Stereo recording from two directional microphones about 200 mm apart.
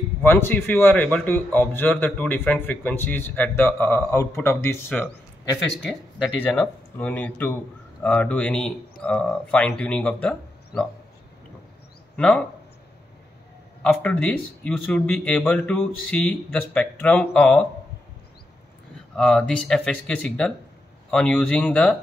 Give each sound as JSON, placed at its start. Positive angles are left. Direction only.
{"t": 0.2, "sound": "a man's voice", "side_deg": 10}
{"t": 12.2, "sound": "speech", "side_deg": 5}
{"t": 13.8, "sound": "a man's voice", "side_deg": 5}
{"t": 19.1, "sound": "speech", "side_deg": 5}